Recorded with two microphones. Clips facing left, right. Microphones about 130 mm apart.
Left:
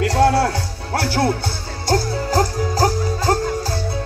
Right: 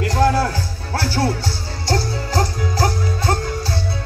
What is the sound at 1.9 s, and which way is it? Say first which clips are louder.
Music: left 3 dB; 45° left (ahead or behind).